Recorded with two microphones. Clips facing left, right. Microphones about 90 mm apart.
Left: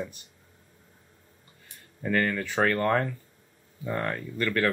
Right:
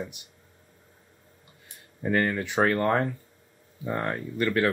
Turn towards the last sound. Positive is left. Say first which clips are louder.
# right 2 dB
turn(degrees=-20)  # may be behind; listen again after turning